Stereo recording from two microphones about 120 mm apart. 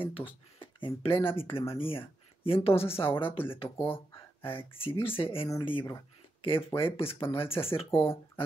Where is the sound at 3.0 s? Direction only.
35° left (ahead or behind).